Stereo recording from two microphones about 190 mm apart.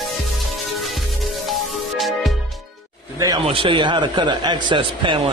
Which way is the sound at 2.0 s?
Centre (ahead or behind).